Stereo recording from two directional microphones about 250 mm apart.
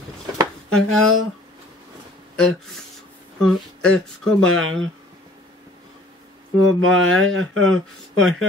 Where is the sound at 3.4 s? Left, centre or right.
Centre.